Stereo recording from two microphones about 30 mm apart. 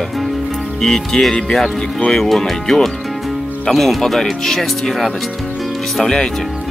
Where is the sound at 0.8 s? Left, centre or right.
Centre.